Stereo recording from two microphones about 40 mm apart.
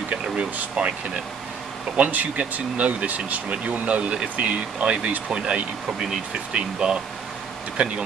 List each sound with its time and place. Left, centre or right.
0.1 s speech: right
2.0 s speech: right
4.1 s speech: right